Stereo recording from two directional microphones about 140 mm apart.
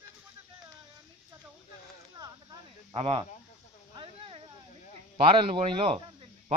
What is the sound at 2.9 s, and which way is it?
Speech, 45° right (ahead or behind).